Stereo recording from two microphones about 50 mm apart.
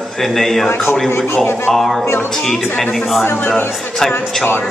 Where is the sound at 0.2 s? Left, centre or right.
Centre.